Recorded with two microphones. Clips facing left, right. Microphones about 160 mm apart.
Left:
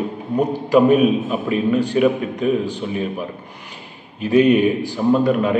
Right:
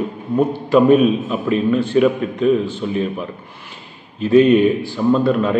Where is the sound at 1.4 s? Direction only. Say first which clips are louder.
Right 3 dB; 15° left (ahead or behind).